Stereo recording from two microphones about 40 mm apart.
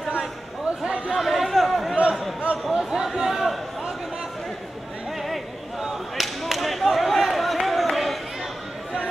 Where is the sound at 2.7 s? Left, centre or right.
Centre.